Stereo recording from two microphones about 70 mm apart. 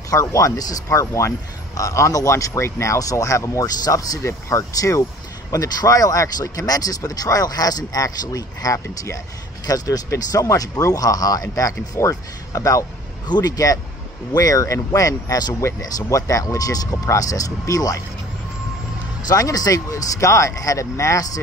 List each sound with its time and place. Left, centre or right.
0.1 s speech: left
4.2 s speech: left
8.8 s speech: left
9.7 s speech: left
10.1 s speech: left
13.3 s speech: left
16.1 s speech: left
19.2 s speech: left